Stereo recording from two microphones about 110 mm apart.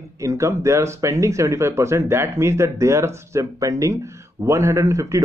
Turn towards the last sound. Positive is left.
turn(degrees=-30)  # may be behind; listen again after turning